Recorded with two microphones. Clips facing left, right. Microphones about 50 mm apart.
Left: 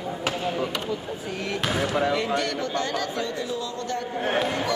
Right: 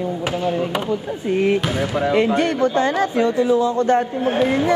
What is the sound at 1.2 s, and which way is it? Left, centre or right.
Speech, right.